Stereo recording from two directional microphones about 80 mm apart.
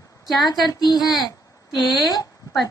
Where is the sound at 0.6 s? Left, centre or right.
Left.